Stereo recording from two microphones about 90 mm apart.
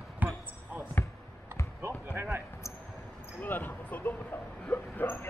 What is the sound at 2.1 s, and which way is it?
Basketball bounce, 25° right (ahead or behind).